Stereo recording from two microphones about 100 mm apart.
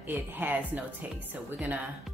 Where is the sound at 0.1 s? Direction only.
20° right (ahead or behind).